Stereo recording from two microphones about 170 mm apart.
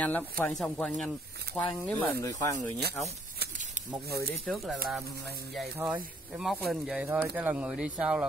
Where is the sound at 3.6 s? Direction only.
45° right (ahead or behind).